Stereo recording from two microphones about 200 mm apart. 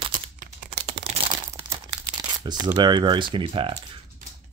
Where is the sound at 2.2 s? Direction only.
20° right (ahead or behind).